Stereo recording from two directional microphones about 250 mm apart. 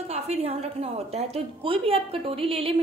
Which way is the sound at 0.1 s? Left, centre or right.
Right.